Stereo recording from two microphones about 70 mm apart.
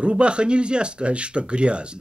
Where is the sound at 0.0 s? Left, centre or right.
Centre.